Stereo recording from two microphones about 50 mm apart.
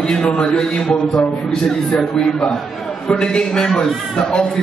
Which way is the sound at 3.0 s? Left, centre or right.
Centre.